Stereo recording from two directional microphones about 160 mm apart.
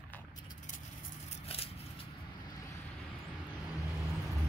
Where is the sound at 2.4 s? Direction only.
25° left (ahead or behind).